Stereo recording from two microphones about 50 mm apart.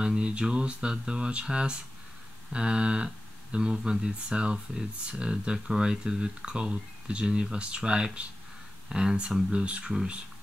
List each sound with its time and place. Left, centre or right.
0.0 s speech: centre